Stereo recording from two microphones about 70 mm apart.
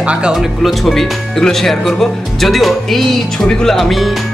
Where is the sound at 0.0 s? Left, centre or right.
Centre.